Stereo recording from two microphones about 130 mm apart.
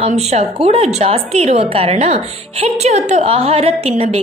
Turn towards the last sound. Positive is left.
turn(degrees=-55)  # may be behind; listen again after turning